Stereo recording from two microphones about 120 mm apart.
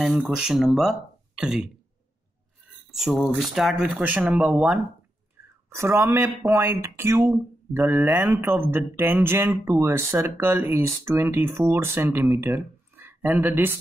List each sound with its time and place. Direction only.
0.0 s speech: centre (ahead or behind)
2.9 s speech: centre (ahead or behind)
5.7 s speech: 20° right (ahead or behind)